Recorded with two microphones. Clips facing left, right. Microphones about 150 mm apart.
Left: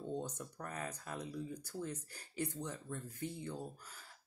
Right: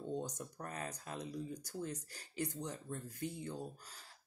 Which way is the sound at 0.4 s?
25° right (ahead or behind).